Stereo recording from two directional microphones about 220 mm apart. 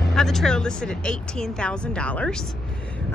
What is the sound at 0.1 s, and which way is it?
A woman's voice, centre (ahead or behind).